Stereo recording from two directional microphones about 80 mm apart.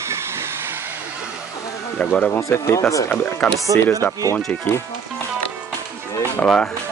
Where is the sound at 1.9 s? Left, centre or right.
Centre.